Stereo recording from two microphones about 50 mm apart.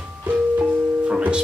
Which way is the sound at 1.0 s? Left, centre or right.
Right.